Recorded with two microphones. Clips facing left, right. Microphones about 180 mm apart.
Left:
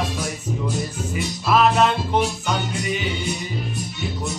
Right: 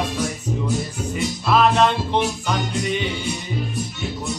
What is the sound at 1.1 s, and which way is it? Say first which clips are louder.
Music: right 1 dB; 5° left (ahead or behind).